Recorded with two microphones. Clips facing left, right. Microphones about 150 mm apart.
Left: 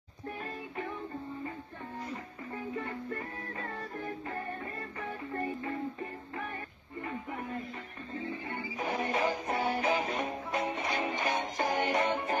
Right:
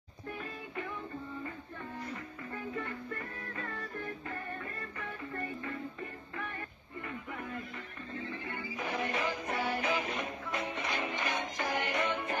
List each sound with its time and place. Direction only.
2.8 s music: 25° left (ahead or behind)
8.7 s music: 45° left (ahead or behind)